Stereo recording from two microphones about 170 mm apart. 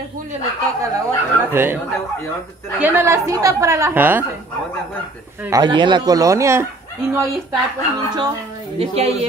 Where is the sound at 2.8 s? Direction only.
15° right (ahead or behind).